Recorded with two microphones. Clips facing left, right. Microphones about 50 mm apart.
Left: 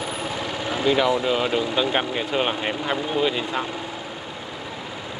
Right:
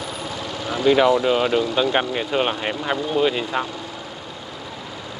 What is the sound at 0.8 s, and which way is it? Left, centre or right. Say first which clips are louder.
Speech: right 4 dB; centre.